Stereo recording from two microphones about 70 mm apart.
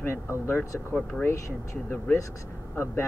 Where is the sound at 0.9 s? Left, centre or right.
Centre.